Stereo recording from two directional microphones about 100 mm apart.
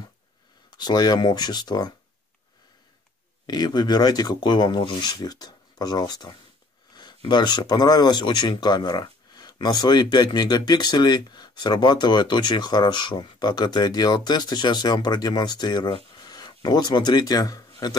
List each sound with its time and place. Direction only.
0.7 s speech: 45° left (ahead or behind)
3.4 s speech: 45° left (ahead or behind)
6.9 s a sound: 45° left (ahead or behind)
7.2 s speech: 50° left (ahead or behind)